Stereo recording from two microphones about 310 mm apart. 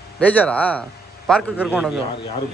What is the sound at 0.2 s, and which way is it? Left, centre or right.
A man's voice, centre.